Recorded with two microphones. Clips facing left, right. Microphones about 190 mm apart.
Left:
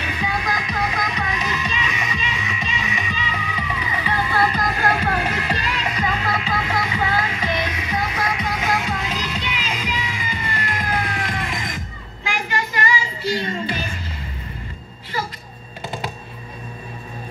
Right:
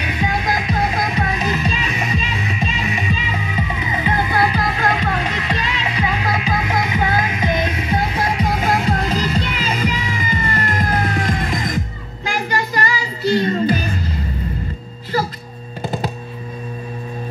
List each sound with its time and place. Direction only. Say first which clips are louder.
0.0 s music: right 4 dB; 20° right (ahead or behind)
4.6 s music: right 2 dB; centre (ahead or behind)
5.9 s music: right 4 dB; 10° right (ahead or behind); by 8.9 s 35° right (ahead or behind)
8.9 s music: right 7 dB; 45° right (ahead or behind)
12.3 s child singing: right 4 dB; 40° right (ahead or behind)
15.1 s music: right 7 dB; 40° right (ahead or behind)